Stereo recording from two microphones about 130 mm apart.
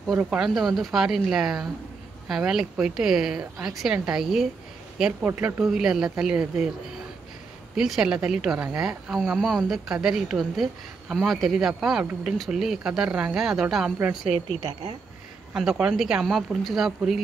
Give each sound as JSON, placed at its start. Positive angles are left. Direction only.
{"t": 0.2, "sound": "speech", "side_deg": -5}
{"t": 7.7, "sound": "speech", "side_deg": -5}
{"t": 14.6, "sound": "speech", "side_deg": -45}
{"t": 15.5, "sound": "speech", "side_deg": -5}